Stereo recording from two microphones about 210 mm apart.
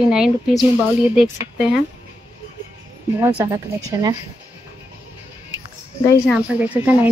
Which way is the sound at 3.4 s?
15° right (ahead or behind).